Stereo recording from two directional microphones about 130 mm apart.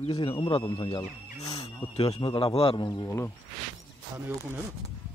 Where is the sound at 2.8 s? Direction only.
30° left (ahead or behind).